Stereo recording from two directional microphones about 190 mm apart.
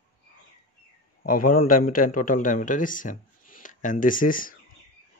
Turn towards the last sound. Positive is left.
turn(degrees=45)  # may be behind; listen again after turning